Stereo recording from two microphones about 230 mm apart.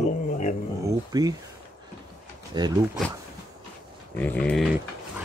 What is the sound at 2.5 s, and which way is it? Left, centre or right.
Speech, centre.